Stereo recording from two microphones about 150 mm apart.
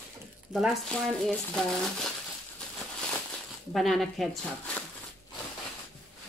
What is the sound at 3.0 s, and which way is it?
Crumpling, 5° left (ahead or behind).